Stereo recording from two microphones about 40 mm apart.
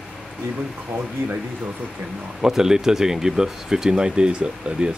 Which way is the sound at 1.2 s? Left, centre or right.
Right.